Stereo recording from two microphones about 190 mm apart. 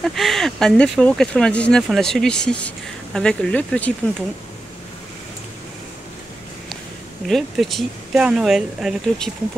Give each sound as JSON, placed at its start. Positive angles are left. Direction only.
{"t": 0.0, "sound": "speech", "side_deg": 0}
{"t": 7.2, "sound": "speech", "side_deg": 0}